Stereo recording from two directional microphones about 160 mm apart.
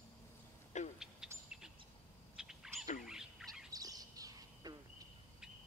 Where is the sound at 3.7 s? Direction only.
20° right (ahead or behind).